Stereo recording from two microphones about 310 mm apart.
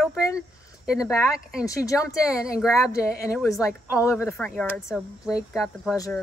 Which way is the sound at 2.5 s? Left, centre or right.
Centre.